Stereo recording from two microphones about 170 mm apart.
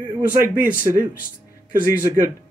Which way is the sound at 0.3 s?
50° right (ahead or behind).